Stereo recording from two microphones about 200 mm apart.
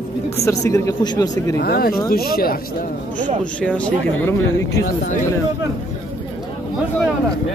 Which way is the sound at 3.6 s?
5° left (ahead or behind).